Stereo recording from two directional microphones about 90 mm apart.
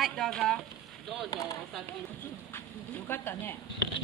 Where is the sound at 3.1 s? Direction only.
25° left (ahead or behind).